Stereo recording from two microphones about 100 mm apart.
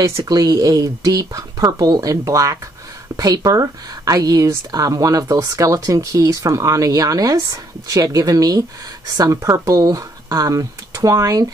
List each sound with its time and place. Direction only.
0.2 s speech: 40° right (ahead or behind)